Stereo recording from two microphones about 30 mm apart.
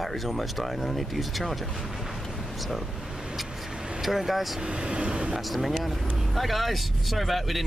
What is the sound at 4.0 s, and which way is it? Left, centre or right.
Speech, centre.